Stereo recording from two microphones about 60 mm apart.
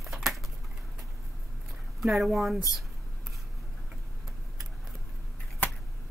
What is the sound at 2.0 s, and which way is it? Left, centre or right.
Speech, centre.